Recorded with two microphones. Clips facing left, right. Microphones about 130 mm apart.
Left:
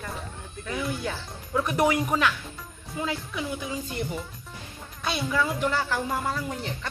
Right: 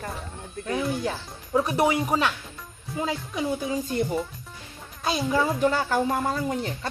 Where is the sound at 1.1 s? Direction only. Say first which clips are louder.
Right 4 dB; 30° right (ahead or behind).